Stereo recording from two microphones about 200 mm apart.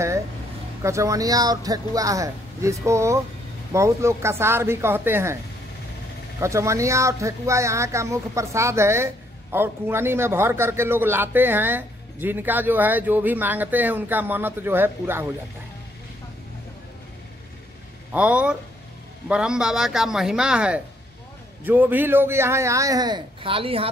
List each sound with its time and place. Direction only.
0.8 s speech: 15° right (ahead or behind)
6.4 s speech: 15° right (ahead or behind)
18.1 s speech: 5° right (ahead or behind); by 23.9 s 25° right (ahead or behind)